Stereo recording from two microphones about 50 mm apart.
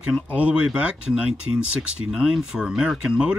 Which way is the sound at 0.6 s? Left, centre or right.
Centre.